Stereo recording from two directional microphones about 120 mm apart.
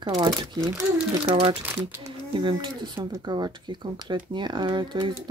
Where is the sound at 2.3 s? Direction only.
45° right (ahead or behind).